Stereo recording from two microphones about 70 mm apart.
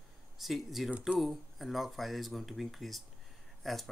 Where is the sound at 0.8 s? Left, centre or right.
Centre.